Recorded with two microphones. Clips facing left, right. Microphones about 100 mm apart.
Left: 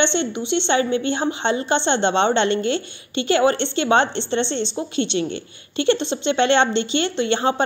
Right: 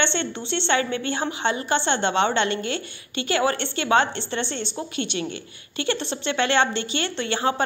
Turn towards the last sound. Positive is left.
turn(degrees=25)  # may be behind; listen again after turning